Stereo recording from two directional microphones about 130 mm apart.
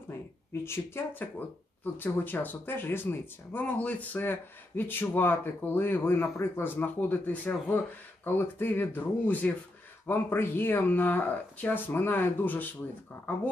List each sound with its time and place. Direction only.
0.5 s speech: 20° left (ahead or behind)